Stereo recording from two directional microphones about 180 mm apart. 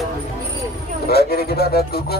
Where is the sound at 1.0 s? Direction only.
60° left (ahead or behind).